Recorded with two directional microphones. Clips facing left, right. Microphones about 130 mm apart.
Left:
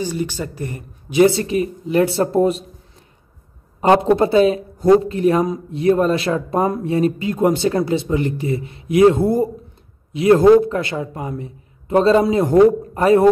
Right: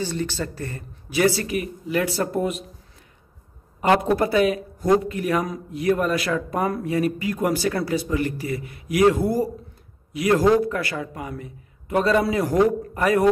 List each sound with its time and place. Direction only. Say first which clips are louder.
0.0 s a man's voice: left 3 dB; 15° left (ahead or behind); by 2.6 s 30° left (ahead or behind)
3.8 s a man's voice: left 5 dB; 25° left (ahead or behind)